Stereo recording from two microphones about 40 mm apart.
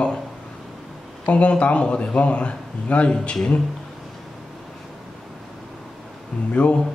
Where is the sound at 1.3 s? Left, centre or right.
Left.